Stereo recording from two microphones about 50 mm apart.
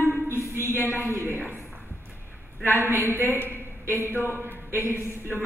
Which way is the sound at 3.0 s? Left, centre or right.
Right.